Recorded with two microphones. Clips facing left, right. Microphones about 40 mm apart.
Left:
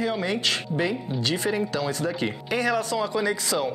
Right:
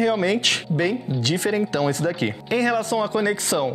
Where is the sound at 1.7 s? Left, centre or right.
Right.